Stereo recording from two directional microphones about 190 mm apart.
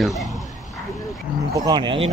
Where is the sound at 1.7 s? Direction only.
25° right (ahead or behind).